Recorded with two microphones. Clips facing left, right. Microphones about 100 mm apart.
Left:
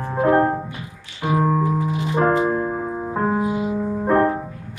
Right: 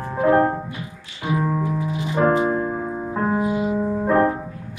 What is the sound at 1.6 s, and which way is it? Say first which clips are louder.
Music: left 3 dB; 35° left (ahead or behind).